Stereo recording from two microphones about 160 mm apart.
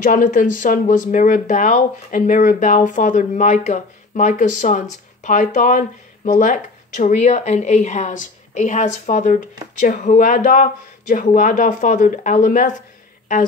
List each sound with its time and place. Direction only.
0.0 s speech: 55° left (ahead or behind)